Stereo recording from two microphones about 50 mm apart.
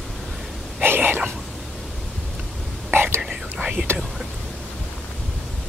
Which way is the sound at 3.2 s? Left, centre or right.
Centre.